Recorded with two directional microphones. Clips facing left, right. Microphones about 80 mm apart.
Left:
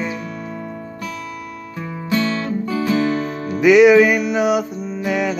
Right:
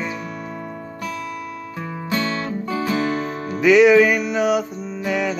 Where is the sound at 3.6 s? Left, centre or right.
Centre.